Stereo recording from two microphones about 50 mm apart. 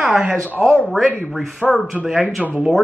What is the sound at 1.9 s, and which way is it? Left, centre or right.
Speech, centre.